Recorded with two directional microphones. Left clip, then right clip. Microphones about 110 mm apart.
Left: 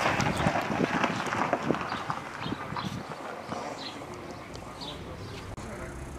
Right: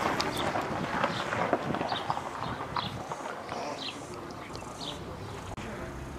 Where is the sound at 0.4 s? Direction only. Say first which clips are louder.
Left 3 dB; 40° left (ahead or behind).